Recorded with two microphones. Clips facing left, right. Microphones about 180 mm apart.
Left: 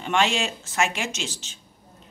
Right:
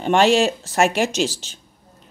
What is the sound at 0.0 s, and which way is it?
Speech, 40° right (ahead or behind).